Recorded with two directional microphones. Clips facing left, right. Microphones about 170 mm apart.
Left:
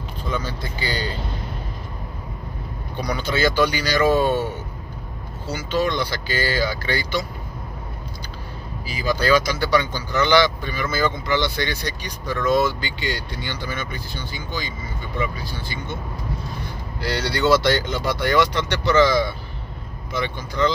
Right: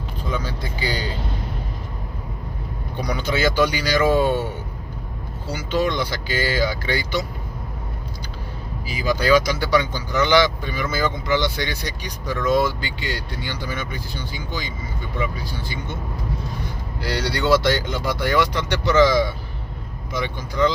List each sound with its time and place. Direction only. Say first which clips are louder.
0.3 s speech: even; 10° right (ahead or behind)
3.2 s speech: even; 15° right (ahead or behind)
5.5 s speech: even; 15° right (ahead or behind)
8.8 s speech: right 1 dB; 15° right (ahead or behind)
17.0 s speech: left 2 dB; 10° right (ahead or behind)